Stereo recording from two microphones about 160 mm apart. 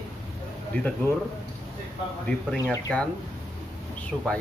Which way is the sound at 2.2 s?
10° left (ahead or behind).